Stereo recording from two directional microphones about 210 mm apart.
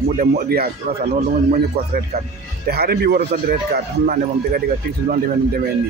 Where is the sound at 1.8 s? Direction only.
50° right (ahead or behind).